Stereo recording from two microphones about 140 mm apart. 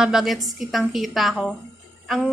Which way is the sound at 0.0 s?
Centre (ahead or behind).